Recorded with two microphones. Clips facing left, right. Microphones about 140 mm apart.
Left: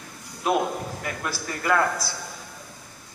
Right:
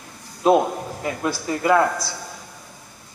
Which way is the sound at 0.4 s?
30° right (ahead or behind).